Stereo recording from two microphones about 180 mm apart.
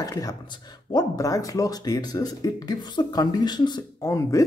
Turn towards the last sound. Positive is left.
turn(degrees=20)  # may be behind; listen again after turning